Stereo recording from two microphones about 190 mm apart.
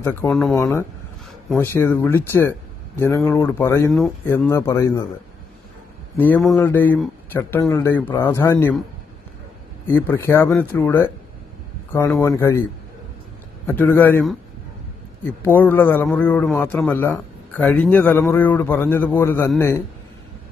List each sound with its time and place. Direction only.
0.0 s a man's voice: 10° left (ahead or behind)
0.6 s a man's voice: 15° left (ahead or behind)
6.1 s a man's voice: 10° left (ahead or behind)
9.8 s a man's voice: 10° left (ahead or behind)
13.7 s a man's voice: 10° left (ahead or behind)
15.4 s a man's voice: 10° left (ahead or behind)